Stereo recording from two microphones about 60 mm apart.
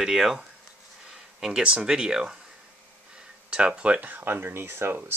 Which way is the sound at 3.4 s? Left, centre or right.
Centre.